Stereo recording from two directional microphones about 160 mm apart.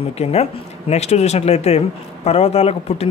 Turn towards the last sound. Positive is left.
turn(degrees=40)  # may be behind; listen again after turning